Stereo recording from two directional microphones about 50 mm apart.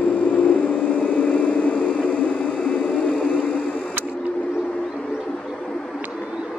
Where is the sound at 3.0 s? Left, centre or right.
Left.